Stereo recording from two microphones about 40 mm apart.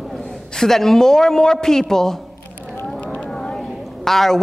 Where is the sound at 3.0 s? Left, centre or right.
Left.